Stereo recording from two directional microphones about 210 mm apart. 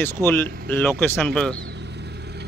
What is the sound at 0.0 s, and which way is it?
Speech, 10° left (ahead or behind).